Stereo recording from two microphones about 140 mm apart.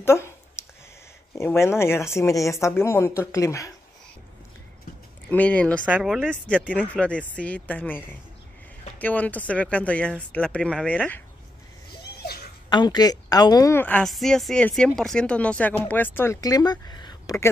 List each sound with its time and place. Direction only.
0.0 s speech: 20° left (ahead or behind)
1.4 s speech: 20° left (ahead or behind)
5.3 s speech: 10° left (ahead or behind)
5.9 s speech: 5° right (ahead or behind)
6.2 s speech: 10° left (ahead or behind)
12.2 s a sound: 90° left
12.6 s speech: 30° left (ahead or behind)
13.7 s speech: 10° left (ahead or behind)
16.3 s speech: 25° left (ahead or behind)